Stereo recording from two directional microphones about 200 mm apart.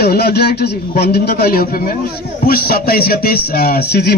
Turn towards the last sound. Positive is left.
turn(degrees=55)  # may be behind; listen again after turning